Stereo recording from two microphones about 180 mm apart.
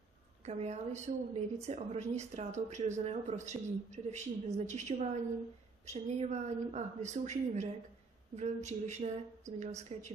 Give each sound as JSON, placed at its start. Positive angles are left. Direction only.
{"t": 0.5, "sound": "a woman's voice", "side_deg": -40}